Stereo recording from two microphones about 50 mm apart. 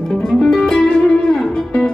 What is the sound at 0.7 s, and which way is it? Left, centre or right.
Music, centre.